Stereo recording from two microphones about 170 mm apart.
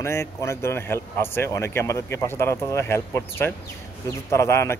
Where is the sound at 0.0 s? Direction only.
15° left (ahead or behind).